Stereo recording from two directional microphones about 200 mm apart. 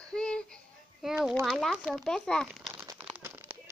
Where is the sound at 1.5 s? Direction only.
5° left (ahead or behind).